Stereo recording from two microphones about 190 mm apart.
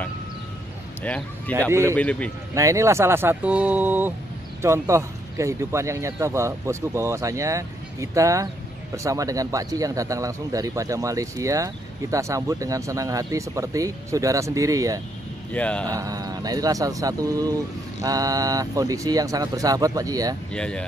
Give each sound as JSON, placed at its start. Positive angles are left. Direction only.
{"t": 1.7, "sound": "speech", "side_deg": -15}
{"t": 2.0, "sound": "speech", "side_deg": 5}
{"t": 2.5, "sound": "speech", "side_deg": -15}
{"t": 15.5, "sound": "speech", "side_deg": 5}
{"t": 15.9, "sound": "speech", "side_deg": -20}
{"t": 20.5, "sound": "speech", "side_deg": 5}